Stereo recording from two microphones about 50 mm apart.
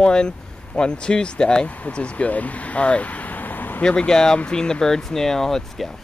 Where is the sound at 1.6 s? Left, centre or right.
Left.